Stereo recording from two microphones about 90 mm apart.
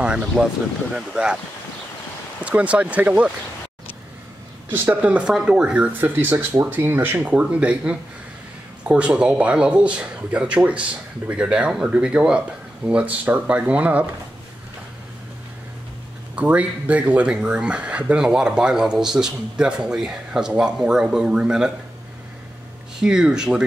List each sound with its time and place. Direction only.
0.3 s speech: 10° left (ahead or behind)
0.9 s speech: 10° right (ahead or behind)
2.4 s speech: 15° right (ahead or behind)
4.6 s speech: 20° right (ahead or behind)
16.3 s speech: 15° right (ahead or behind)
22.9 s speech: 5° right (ahead or behind)